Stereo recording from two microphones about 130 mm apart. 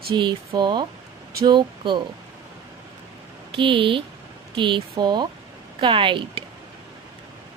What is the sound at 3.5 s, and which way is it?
Speech, 40° right (ahead or behind).